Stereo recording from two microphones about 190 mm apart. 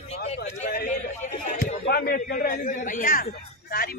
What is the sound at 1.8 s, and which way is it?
A man's voice, 55° left (ahead or behind).